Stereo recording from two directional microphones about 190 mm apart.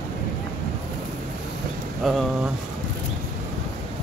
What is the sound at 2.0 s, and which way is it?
Speech, centre (ahead or behind).